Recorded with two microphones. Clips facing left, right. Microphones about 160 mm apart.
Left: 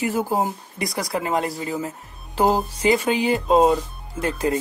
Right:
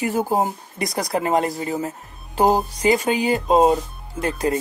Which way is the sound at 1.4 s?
35° right (ahead or behind).